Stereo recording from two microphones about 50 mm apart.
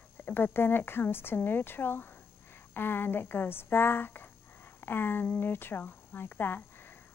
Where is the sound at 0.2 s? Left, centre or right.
Left.